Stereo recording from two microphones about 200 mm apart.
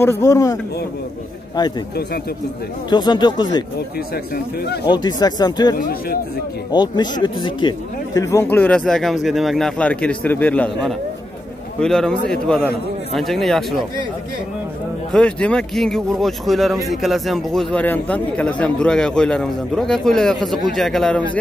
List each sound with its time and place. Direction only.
0.0 s speech: 15° left (ahead or behind)
1.6 s speech: 20° left (ahead or behind)
2.9 s speech: 20° left (ahead or behind)
4.1 s speech: 50° left (ahead or behind)
4.8 s speech: 20° left (ahead or behind); by 13.8 s centre (ahead or behind)
15.1 s speech: 5° left (ahead or behind)